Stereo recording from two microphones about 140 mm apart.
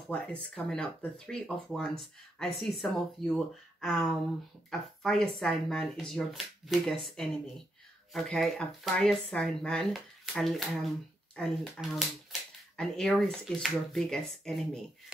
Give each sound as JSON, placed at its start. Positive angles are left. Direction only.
{"t": 0.1, "sound": "speech", "side_deg": 10}